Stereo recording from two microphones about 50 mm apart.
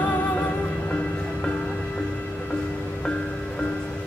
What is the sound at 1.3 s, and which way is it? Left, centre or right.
Music, centre.